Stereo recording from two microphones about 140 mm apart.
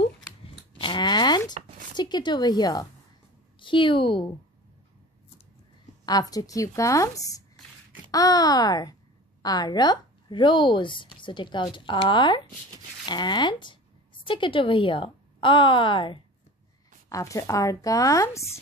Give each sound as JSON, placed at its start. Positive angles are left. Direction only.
{"t": 0.7, "sound": "a sound", "side_deg": 35}
{"t": 2.0, "sound": "a woman's voice", "side_deg": 30}
{"t": 6.0, "sound": "speech", "side_deg": 30}
{"t": 17.1, "sound": "speech", "side_deg": 25}